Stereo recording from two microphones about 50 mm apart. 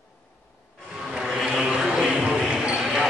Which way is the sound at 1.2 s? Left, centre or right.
Centre.